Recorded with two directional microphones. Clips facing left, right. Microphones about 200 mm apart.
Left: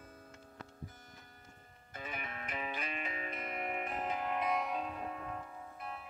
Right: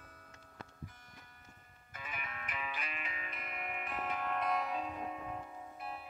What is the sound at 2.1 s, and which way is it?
Music, 35° left (ahead or behind).